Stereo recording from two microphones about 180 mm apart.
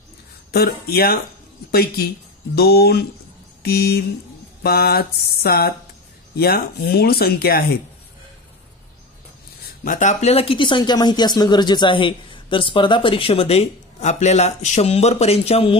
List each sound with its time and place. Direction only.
0.5 s speech: 60° left (ahead or behind)
9.8 s speech: 40° left (ahead or behind)